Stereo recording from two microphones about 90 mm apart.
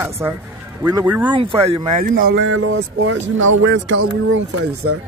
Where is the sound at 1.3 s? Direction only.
85° right.